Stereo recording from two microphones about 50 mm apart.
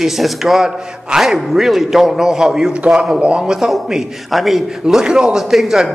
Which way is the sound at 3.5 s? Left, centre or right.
Centre.